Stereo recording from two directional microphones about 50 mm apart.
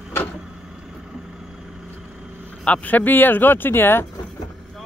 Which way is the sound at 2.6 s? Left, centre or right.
Left.